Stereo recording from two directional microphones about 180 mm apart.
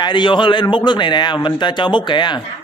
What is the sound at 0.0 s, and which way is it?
A man's voice, 25° left (ahead or behind).